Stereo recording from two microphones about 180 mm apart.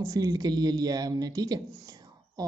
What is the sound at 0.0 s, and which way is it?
Speech, 20° right (ahead or behind).